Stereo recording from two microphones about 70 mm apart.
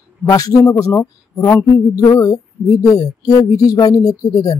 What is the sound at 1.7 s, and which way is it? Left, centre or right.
Speech, left.